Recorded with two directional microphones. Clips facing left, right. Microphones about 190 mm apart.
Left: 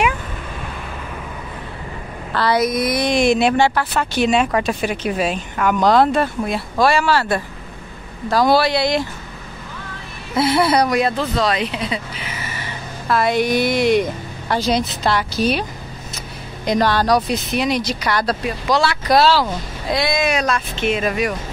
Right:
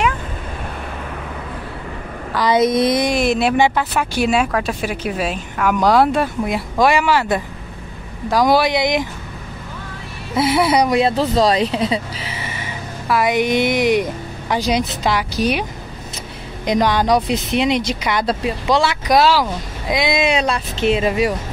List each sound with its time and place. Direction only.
2.3 s speech: 20° right (ahead or behind)
3.0 s speech: 5° right (ahead or behind)
3.5 s speech: 15° right (ahead or behind)
10.3 s speech: 15° right (ahead or behind)
10.9 s speech: 25° right (ahead or behind)
16.6 s speech: 15° right (ahead or behind)